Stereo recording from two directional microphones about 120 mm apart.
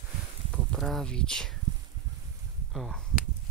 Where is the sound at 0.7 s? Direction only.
5° left (ahead or behind).